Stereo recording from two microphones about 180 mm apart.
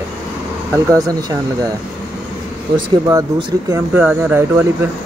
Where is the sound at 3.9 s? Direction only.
10° right (ahead or behind).